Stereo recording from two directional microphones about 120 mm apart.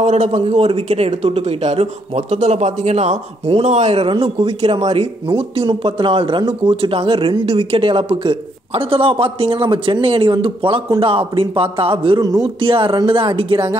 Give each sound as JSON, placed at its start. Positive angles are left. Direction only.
{"t": 0.0, "sound": "speech", "side_deg": -65}
{"t": 0.7, "sound": "speech", "side_deg": -50}
{"t": 4.1, "sound": "speech", "side_deg": -45}